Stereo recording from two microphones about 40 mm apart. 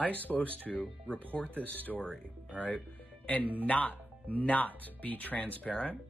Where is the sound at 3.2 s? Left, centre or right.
Left.